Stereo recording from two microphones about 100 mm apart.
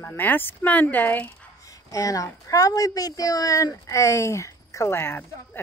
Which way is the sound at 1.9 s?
35° left (ahead or behind).